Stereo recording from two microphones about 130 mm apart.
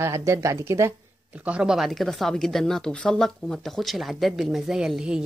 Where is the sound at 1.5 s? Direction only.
5° right (ahead or behind).